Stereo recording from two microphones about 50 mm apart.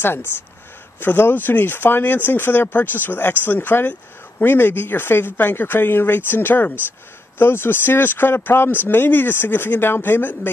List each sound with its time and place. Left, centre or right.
0.0 s speech: left